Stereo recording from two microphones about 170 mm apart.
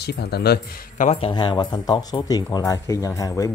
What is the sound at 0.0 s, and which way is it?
Speech, 70° left (ahead or behind).